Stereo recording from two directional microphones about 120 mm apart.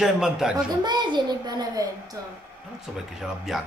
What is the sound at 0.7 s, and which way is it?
A woman's voice, 40° right (ahead or behind).